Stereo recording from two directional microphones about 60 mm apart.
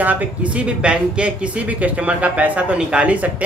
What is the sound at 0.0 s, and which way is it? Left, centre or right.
Speech, right.